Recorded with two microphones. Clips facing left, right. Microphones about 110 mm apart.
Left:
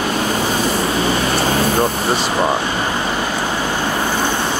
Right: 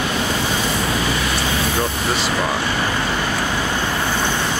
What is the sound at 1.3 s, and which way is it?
Vehicle, 45° left (ahead or behind).